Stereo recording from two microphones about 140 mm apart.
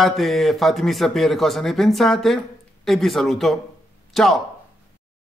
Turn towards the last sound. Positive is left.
turn(degrees=0)  # may be behind; listen again after turning